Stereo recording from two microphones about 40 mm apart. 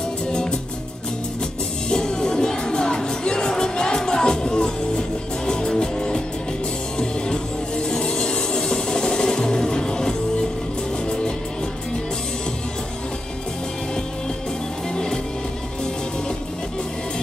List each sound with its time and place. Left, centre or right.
0.3 s music: centre
1.9 s music: centre